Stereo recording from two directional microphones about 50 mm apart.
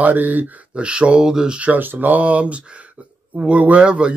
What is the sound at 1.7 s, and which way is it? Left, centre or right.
Speech, right.